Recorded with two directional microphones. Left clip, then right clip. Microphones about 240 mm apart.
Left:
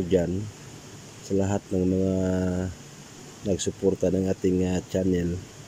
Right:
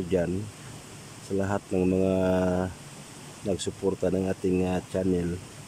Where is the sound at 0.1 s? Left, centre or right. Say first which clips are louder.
Left 3 dB; centre.